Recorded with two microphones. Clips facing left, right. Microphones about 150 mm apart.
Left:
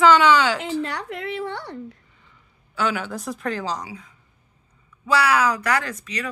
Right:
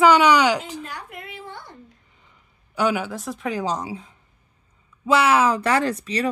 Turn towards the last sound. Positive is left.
turn(degrees=-25)  # may be behind; listen again after turning